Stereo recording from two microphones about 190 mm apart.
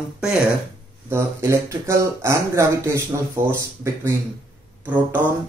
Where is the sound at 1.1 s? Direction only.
15° right (ahead or behind).